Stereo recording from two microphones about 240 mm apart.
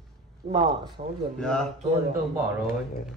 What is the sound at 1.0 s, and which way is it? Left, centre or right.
Speech, right.